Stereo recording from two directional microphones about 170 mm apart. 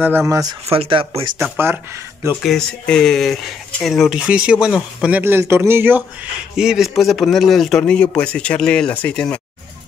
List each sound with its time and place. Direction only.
0.0 s speech: 10° right (ahead or behind)
0.7 s speech: 30° right (ahead or behind)
1.6 s speech: 15° right (ahead or behind)
2.4 s speech: 5° left (ahead or behind)